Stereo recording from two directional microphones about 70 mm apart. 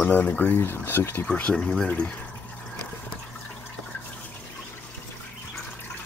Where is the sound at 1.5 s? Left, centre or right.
Centre.